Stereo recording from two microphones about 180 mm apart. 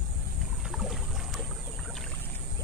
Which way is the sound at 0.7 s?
Centre (ahead or behind).